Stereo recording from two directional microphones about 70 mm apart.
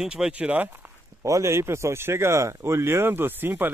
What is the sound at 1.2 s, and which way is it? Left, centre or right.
Speech, right.